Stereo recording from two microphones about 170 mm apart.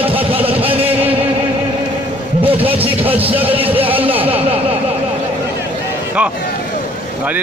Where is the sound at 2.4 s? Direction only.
35° right (ahead or behind).